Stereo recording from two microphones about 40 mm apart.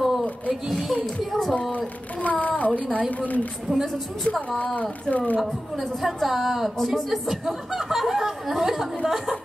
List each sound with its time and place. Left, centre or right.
1.0 s speech: centre
2.2 s a child's voice: left
3.7 s speech: centre
5.1 s speech: left
5.4 s speech: centre